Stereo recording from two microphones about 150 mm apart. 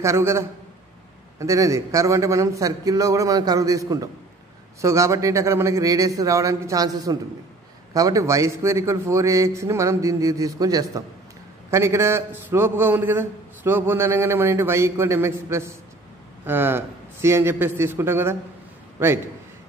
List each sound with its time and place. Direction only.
0.0 s a man's voice: 15° right (ahead or behind)